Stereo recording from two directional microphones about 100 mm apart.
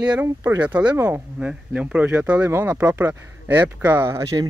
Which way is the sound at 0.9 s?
25° right (ahead or behind).